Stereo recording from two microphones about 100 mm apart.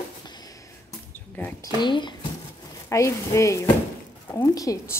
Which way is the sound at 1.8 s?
50° left (ahead or behind).